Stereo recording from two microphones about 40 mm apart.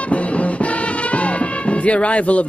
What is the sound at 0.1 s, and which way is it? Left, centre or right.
Speech, left.